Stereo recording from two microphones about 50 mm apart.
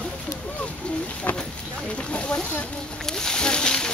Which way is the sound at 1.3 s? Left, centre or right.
Left.